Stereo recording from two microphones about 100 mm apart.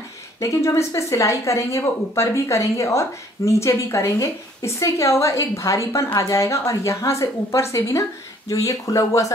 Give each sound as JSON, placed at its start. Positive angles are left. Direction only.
{"t": 0.4, "sound": "speech", "side_deg": 30}